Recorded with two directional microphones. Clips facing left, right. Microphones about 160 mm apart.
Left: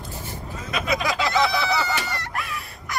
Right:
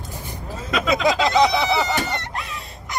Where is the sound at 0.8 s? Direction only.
25° right (ahead or behind).